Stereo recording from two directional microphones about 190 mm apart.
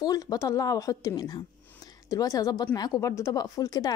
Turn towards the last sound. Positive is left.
turn(degrees=20)  # may be behind; listen again after turning